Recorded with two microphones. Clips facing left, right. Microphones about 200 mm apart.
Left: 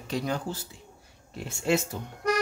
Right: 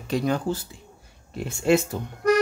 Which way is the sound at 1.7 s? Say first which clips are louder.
Right 6 dB; 55° right (ahead or behind).